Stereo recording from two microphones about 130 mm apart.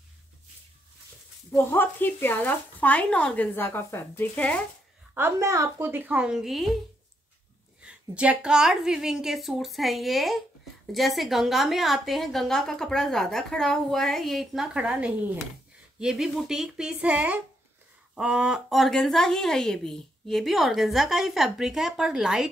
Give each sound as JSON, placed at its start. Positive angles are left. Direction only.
{"t": 1.5, "sound": "speech", "side_deg": 20}
{"t": 5.1, "sound": "a woman's voice", "side_deg": -20}
{"t": 7.8, "sound": "a woman's voice", "side_deg": -10}